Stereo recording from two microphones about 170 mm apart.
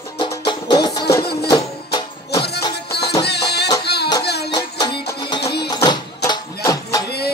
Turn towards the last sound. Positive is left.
turn(degrees=70)  # may be behind; listen again after turning